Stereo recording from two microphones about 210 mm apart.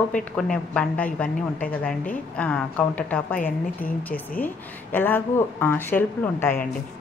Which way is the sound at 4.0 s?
10° left (ahead or behind).